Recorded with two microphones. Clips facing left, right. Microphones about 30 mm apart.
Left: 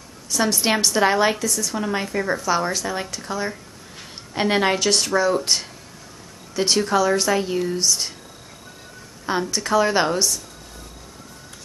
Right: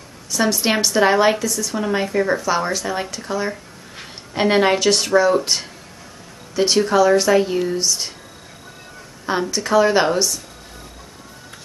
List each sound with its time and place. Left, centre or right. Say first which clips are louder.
0.3 s a woman's voice: right 2 dB; centre
3.9 s a sound: right 2 dB; centre
4.5 s speech: right 4 dB; centre
9.5 s speech: right 4 dB; centre